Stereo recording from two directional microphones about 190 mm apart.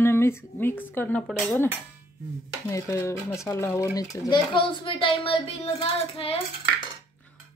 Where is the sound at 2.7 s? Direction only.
15° left (ahead or behind); by 5.7 s 30° left (ahead or behind).